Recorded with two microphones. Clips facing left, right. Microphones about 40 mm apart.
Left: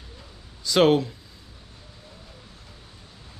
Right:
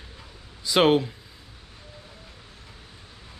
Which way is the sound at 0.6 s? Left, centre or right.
Centre.